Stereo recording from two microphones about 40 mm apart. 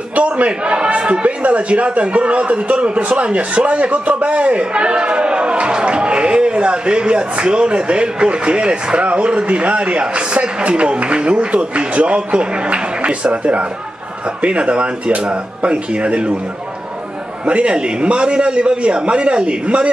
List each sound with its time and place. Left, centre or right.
0.1 s a man's voice: right
17.5 s a man's voice: right